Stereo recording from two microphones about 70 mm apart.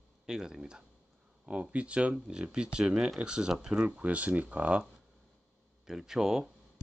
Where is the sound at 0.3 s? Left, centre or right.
Centre.